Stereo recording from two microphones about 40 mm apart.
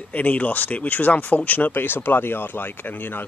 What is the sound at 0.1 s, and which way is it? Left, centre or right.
Speech, left.